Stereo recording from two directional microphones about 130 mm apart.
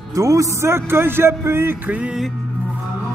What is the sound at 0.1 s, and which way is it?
A man's voice, 25° right (ahead or behind).